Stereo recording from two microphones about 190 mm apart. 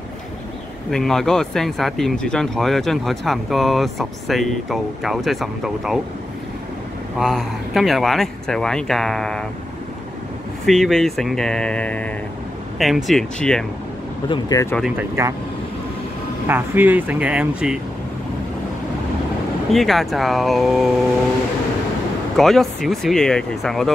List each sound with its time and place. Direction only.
0.8 s speech: centre (ahead or behind)
7.2 s speech: centre (ahead or behind)
10.6 s speech: centre (ahead or behind)
14.3 s speech: 15° left (ahead or behind)
15.0 s speech: 15° right (ahead or behind)
16.4 s speech: 10° right (ahead or behind)
19.7 s speech: centre (ahead or behind)
22.4 s speech: centre (ahead or behind)